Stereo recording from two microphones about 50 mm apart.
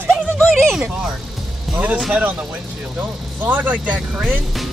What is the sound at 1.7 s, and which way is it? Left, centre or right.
Music, centre.